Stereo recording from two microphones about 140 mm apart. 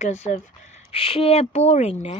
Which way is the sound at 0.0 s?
55° left (ahead or behind).